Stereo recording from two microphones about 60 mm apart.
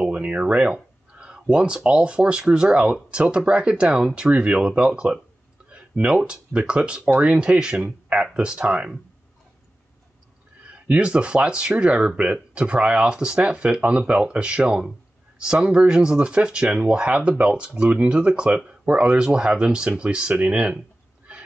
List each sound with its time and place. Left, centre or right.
0.0 s a sound: centre
1.4 s speech: centre
10.9 s speech: centre